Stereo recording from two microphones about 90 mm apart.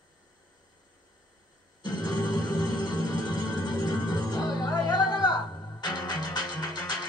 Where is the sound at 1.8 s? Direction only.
55° left (ahead or behind).